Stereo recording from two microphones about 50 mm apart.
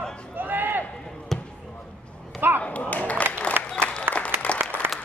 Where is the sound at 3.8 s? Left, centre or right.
Left.